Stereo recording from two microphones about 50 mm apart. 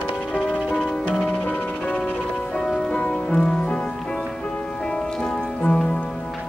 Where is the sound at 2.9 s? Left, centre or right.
Left.